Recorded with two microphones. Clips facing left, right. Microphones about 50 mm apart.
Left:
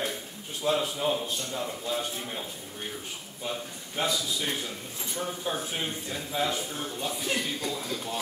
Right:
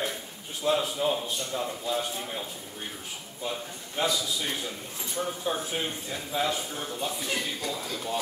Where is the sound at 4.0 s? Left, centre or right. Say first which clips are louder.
Right 1 dB; centre.